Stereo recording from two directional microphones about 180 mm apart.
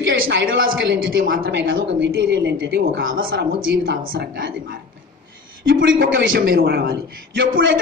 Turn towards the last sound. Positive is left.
turn(degrees=-75)  # may be behind; listen again after turning